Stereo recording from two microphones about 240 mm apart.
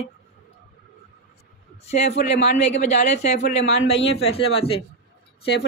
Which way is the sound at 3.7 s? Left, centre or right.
Left.